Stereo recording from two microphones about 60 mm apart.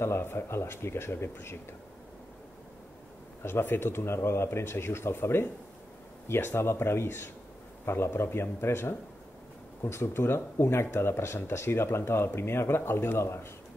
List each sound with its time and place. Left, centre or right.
0.0 s speech: left
3.4 s speech: left